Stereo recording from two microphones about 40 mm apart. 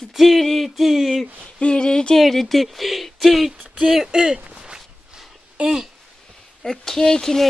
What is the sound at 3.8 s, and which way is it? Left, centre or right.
Speech, centre.